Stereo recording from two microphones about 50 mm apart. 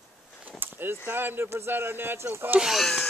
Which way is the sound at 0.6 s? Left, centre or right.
Right.